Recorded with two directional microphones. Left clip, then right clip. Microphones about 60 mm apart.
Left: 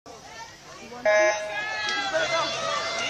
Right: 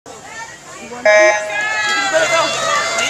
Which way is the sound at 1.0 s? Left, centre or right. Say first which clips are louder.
Right 11 dB; centre.